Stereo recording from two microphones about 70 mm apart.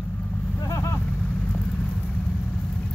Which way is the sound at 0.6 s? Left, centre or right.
Left.